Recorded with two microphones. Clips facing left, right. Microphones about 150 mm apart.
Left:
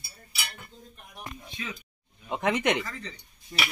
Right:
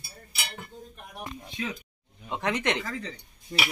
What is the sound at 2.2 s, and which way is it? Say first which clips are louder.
Speech: left 2 dB; 15° left (ahead or behind).